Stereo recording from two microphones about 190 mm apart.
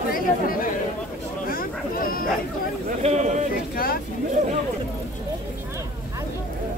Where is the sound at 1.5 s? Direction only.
50° left (ahead or behind).